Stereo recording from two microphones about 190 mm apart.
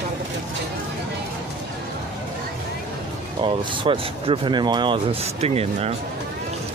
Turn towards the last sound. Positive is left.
turn(degrees=-35)  # may be behind; listen again after turning